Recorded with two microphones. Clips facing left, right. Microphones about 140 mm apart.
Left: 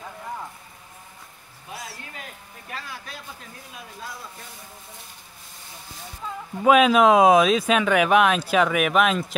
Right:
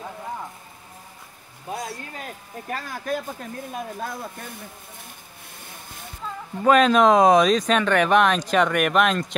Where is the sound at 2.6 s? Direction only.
45° right (ahead or behind).